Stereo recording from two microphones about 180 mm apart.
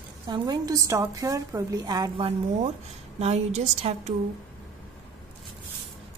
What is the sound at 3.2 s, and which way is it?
Speech, 35° right (ahead or behind).